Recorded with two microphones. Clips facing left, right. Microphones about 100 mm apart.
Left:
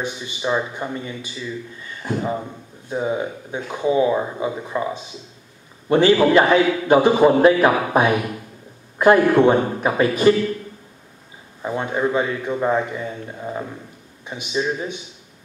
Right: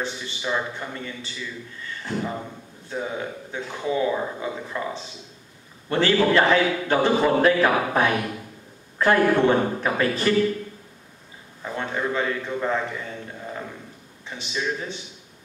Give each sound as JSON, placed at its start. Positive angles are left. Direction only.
{"t": 0.0, "sound": "a man's voice", "side_deg": 20}
{"t": 11.6, "sound": "a man's voice", "side_deg": 20}